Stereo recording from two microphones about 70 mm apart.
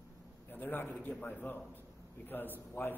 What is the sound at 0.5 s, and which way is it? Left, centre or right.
A man's voice, left.